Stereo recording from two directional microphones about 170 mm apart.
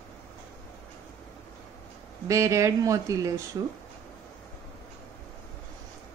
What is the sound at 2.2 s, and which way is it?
A woman's voice, 15° right (ahead or behind).